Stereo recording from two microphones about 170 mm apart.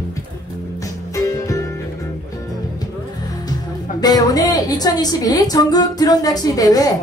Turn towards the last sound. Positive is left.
turn(degrees=20)  # may be behind; listen again after turning